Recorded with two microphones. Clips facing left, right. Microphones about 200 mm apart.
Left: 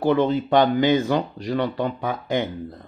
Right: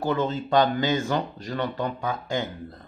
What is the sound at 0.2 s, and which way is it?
Speech, 20° left (ahead or behind).